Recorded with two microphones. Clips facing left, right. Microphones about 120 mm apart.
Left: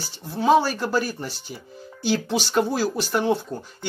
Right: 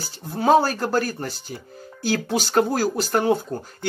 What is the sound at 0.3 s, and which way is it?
Speech, 50° right (ahead or behind).